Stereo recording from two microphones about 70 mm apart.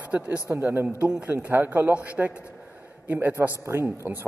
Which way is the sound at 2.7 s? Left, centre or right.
Right.